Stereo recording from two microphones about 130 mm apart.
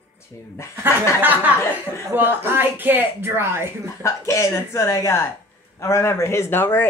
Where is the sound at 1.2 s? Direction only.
15° right (ahead or behind).